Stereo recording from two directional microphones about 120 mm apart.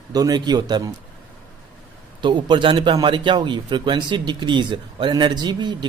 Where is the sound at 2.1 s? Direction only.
40° right (ahead or behind).